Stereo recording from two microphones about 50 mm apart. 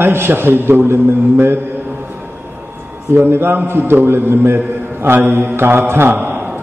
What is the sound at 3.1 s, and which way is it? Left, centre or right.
A man's voice, right.